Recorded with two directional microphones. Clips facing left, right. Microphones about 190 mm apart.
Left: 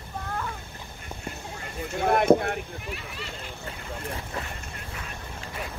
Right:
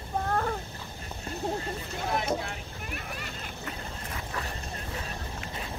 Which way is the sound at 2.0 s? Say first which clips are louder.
Left 11 dB; 60° left (ahead or behind).